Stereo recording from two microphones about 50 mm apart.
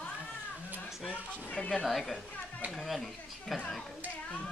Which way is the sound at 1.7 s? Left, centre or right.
Centre.